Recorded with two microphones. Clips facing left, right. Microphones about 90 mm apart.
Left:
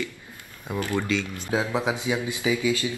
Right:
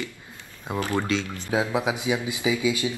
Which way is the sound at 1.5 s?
15° right (ahead or behind).